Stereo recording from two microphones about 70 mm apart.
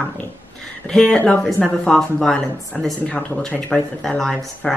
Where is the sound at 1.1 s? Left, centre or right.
Left.